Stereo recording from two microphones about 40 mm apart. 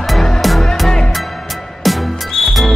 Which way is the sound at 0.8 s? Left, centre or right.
Centre.